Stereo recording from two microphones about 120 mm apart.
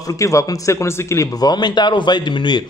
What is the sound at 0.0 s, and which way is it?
Speech, 30° left (ahead or behind).